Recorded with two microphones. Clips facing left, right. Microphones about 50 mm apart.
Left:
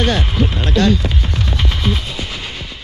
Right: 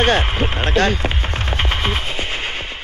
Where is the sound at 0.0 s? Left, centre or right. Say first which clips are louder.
Right 1 dB; right.